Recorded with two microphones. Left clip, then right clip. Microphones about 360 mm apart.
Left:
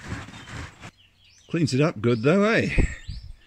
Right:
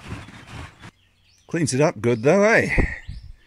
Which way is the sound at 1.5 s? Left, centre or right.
Centre.